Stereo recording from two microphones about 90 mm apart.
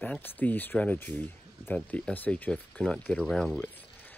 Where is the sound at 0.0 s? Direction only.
20° left (ahead or behind).